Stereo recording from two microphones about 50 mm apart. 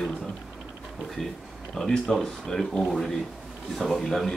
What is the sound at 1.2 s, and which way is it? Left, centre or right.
Speech, centre.